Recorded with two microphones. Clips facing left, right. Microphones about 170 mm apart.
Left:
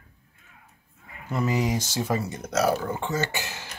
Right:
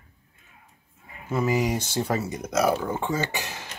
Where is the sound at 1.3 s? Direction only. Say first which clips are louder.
Right 1 dB; 5° right (ahead or behind).